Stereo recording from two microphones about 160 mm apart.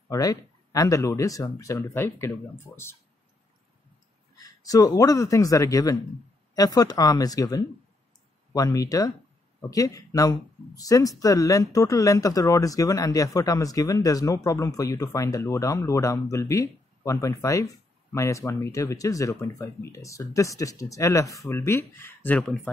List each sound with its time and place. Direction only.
0.1 s speech: 20° left (ahead or behind)
4.4 s speech: 20° left (ahead or behind)